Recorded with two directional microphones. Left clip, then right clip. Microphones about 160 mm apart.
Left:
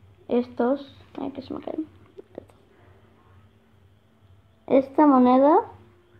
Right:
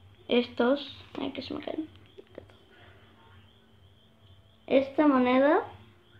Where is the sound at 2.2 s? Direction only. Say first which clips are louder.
Left 6 dB; 55° left (ahead or behind).